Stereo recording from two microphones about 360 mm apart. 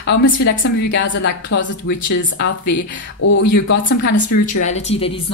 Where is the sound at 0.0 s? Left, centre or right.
Left.